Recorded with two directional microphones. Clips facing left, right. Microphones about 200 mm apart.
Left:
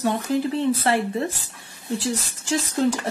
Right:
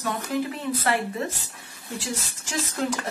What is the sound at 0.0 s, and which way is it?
Speech, 30° left (ahead or behind).